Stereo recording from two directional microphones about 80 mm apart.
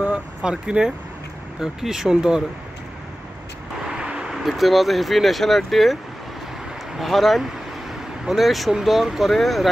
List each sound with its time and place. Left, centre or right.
0.0 s vehicle: centre
1.6 s speech: centre
3.9 s speech: centre
7.0 s speech: centre